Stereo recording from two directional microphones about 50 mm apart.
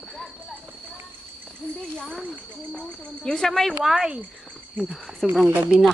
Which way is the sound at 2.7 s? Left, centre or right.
Centre.